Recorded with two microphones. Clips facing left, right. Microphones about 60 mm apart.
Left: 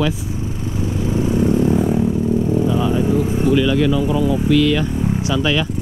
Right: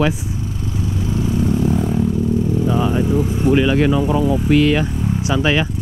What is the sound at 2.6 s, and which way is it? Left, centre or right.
Vehicle, right.